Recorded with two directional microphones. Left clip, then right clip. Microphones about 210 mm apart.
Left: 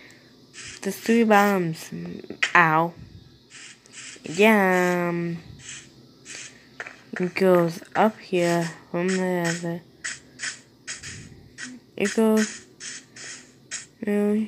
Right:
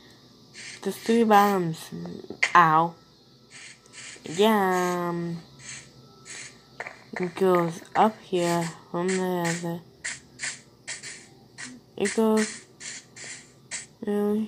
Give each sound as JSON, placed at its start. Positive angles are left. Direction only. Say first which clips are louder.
{"t": 0.8, "sound": "speech", "louder": "left 1 dB", "side_deg": 5}
{"t": 2.5, "sound": "speech", "louder": "even", "side_deg": 5}
{"t": 3.5, "sound": "crow", "louder": "left 1 dB", "side_deg": 15}
{"t": 4.3, "sound": "speech", "louder": "left 3 dB", "side_deg": 15}
{"t": 7.2, "sound": "speech", "louder": "left 3 dB", "side_deg": 15}
{"t": 12.1, "sound": "speech", "louder": "left 2 dB", "side_deg": 10}
{"t": 13.7, "sound": "beatboxing", "louder": "left 2 dB", "side_deg": 10}